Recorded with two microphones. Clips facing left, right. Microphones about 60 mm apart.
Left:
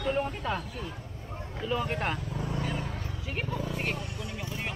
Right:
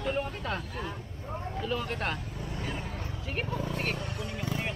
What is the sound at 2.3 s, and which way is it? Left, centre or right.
Vehicle, left.